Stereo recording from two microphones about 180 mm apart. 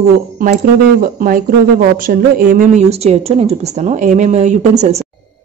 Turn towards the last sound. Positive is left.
turn(degrees=-40)  # may be behind; listen again after turning